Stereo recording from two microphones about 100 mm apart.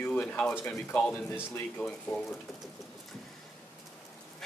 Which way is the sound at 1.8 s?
5° left (ahead or behind).